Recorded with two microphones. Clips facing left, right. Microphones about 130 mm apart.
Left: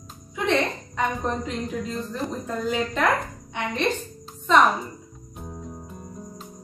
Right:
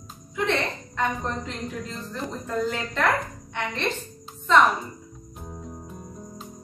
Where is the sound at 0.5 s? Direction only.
15° left (ahead or behind).